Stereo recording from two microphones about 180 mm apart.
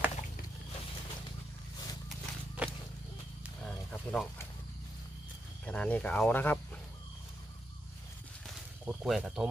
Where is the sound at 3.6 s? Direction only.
5° left (ahead or behind).